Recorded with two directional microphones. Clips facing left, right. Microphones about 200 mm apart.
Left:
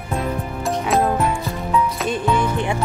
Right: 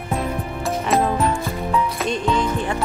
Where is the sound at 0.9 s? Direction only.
Centre (ahead or behind).